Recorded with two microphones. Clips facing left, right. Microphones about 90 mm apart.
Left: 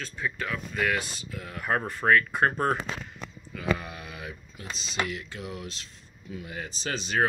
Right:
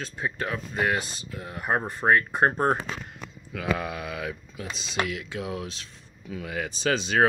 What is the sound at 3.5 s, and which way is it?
Speech, 85° right.